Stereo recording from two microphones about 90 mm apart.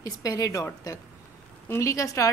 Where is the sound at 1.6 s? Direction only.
30° left (ahead or behind).